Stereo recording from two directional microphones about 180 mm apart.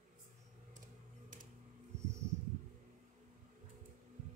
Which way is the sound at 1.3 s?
45° right (ahead or behind).